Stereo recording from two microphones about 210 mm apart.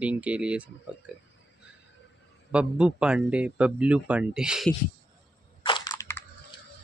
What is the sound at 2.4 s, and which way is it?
Speech, 5° right (ahead or behind).